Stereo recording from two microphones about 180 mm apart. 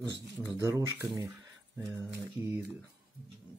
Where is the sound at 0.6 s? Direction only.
15° right (ahead or behind).